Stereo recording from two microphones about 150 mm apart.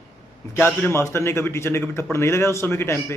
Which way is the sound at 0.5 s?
15° left (ahead or behind).